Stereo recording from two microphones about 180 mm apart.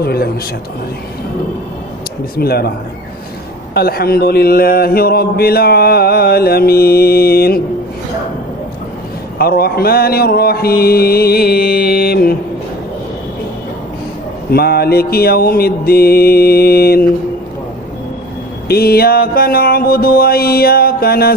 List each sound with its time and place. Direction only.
0.0 s speech: 60° left (ahead or behind)
2.3 s speech: 60° left (ahead or behind)
3.7 s speech: 60° left (ahead or behind)
9.4 s speech: 60° left (ahead or behind)
14.5 s speech: 60° left (ahead or behind)
18.7 s speech: 60° left (ahead or behind)